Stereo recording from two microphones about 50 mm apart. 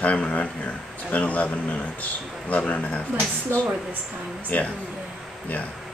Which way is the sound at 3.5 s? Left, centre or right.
Right.